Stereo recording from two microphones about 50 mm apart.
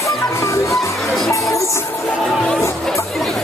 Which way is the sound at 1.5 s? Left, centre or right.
Left.